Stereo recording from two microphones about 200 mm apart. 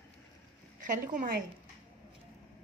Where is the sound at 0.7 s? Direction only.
40° right (ahead or behind).